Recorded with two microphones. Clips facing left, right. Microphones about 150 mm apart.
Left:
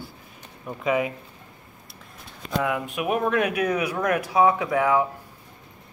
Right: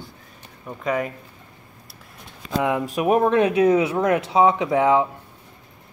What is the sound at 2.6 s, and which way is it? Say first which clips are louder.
Speech: right 4 dB; 25° right (ahead or behind).